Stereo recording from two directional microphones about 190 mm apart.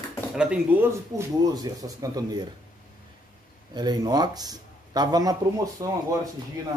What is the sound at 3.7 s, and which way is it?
Speech, 20° right (ahead or behind).